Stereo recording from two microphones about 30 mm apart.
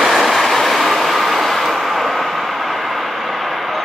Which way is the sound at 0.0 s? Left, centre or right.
Centre.